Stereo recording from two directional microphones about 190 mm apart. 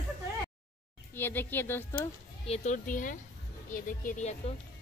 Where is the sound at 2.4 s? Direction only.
35° left (ahead or behind).